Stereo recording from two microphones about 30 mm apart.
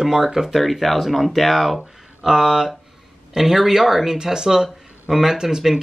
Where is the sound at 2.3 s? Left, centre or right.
Right.